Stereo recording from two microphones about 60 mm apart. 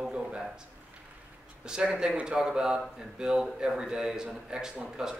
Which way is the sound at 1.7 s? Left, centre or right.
Centre.